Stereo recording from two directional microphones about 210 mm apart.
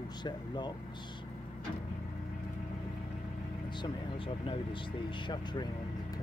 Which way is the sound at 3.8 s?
25° left (ahead or behind).